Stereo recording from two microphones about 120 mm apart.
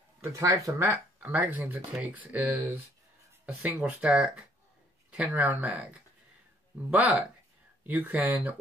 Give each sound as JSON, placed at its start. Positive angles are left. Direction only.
{"t": 0.2, "sound": "speech", "side_deg": -25}